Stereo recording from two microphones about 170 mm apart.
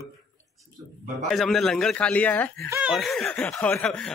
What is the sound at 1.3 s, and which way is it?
Speech, centre (ahead or behind).